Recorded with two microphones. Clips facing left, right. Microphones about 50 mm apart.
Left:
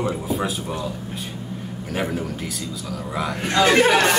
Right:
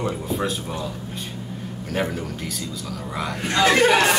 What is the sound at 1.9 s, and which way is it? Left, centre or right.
A man's voice, centre.